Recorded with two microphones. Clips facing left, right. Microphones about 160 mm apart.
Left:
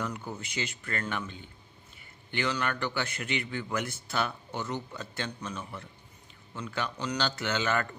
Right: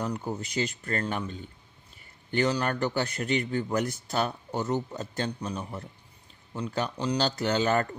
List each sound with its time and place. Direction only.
0.0 s speech: 35° right (ahead or behind)